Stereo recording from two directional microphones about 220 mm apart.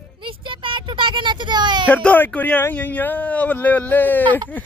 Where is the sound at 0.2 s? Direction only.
25° right (ahead or behind).